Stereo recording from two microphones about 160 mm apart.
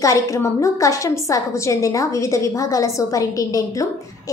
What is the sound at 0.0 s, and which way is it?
A woman's voice, 20° left (ahead or behind).